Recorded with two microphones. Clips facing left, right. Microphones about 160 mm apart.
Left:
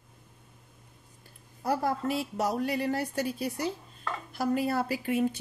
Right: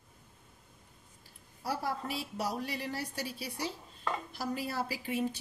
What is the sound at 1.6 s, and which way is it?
Speech, 50° left (ahead or behind).